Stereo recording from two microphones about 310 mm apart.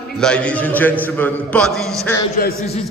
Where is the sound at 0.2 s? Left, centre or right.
Centre.